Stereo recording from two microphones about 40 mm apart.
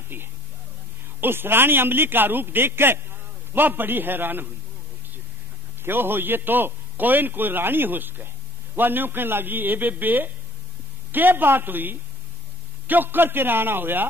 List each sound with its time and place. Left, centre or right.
0.1 s a man's voice: right
3.5 s a man's voice: right
5.9 s a man's voice: right